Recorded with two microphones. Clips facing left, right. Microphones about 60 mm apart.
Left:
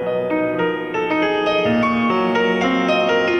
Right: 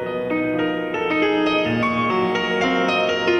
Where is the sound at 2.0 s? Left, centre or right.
Left.